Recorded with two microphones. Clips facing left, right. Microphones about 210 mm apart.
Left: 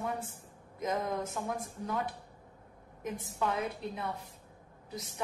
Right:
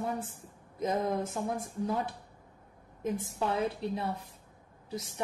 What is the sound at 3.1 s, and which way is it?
Speech, 30° right (ahead or behind).